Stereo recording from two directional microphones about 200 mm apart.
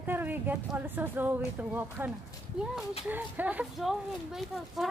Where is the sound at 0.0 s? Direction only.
10° right (ahead or behind).